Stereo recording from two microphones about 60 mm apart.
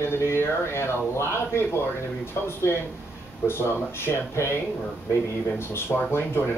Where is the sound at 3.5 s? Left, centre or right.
Left.